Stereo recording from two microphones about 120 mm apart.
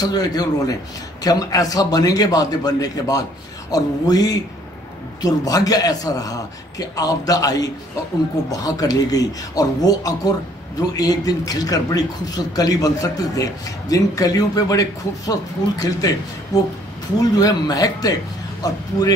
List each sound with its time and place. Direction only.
0.0 s speech: 35° left (ahead or behind)
16.5 s speech: 30° left (ahead or behind)